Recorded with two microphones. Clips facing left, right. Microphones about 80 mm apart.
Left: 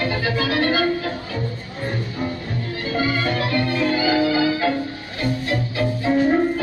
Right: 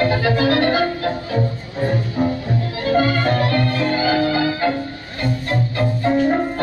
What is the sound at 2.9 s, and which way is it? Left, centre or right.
Music, right.